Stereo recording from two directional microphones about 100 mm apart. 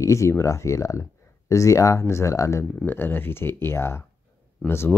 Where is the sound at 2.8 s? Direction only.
20° left (ahead or behind).